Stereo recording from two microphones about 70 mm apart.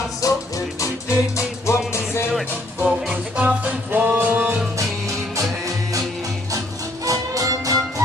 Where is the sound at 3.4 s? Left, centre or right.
Centre.